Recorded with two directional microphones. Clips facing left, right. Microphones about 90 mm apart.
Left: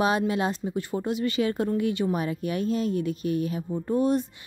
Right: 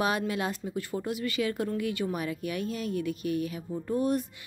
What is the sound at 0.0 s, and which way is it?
Speech, 25° left (ahead or behind).